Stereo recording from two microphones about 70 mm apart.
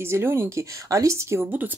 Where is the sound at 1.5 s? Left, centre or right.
Right.